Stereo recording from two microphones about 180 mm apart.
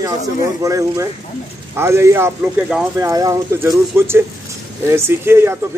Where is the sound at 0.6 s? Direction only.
20° right (ahead or behind).